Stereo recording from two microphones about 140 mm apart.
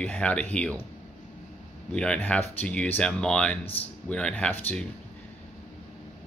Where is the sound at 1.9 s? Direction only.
5° left (ahead or behind).